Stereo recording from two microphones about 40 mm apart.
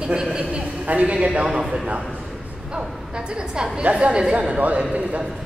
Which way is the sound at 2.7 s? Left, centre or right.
Right.